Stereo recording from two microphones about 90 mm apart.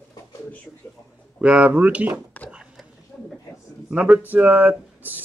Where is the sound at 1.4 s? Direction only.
15° right (ahead or behind).